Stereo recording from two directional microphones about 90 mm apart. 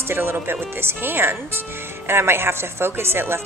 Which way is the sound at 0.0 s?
25° right (ahead or behind).